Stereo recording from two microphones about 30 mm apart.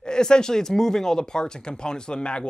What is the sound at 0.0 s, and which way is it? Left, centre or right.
Speech, left.